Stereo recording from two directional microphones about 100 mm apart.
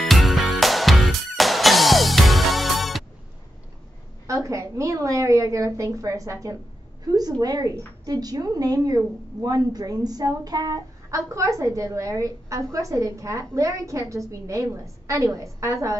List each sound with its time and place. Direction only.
0.0 s music: centre (ahead or behind)
4.3 s a woman's voice: 35° right (ahead or behind)